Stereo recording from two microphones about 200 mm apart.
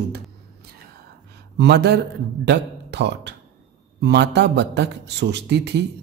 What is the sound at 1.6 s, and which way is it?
Speech, 55° right (ahead or behind).